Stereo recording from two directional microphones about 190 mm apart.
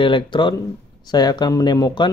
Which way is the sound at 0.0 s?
25° left (ahead or behind).